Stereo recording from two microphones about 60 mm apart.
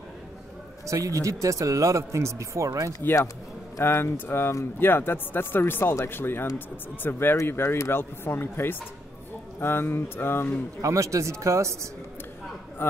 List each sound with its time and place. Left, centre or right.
0.8 s speech: right
3.8 s speech: left
8.0 s speech: left
10.8 s speech: right